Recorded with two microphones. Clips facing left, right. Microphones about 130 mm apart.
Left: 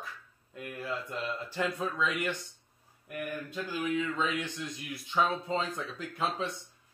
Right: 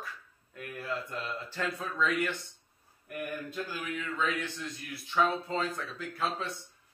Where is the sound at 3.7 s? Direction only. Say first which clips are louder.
Left 5 dB; 20° left (ahead or behind).